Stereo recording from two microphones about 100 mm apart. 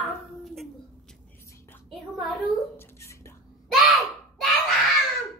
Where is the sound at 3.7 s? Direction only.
Centre (ahead or behind).